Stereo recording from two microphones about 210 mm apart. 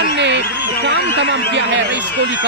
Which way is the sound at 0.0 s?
55° right (ahead or behind).